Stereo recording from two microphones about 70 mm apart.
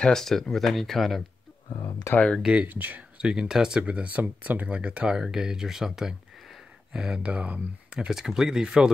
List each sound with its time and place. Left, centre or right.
0.0 s speech: centre
2.1 s speech: centre
2.4 s speech: centre
3.2 s speech: centre
8.1 s speech: centre